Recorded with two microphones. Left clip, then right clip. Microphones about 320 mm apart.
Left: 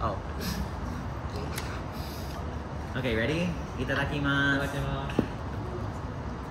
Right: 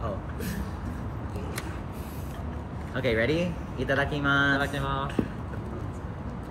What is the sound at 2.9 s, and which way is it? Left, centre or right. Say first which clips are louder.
Speech: right 4 dB; centre.